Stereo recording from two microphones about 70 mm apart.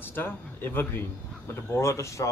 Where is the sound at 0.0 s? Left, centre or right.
Left.